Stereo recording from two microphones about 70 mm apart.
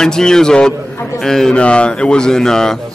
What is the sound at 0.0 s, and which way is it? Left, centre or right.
Speech, centre.